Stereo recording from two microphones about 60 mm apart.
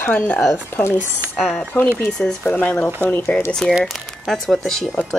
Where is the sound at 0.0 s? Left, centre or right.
Left.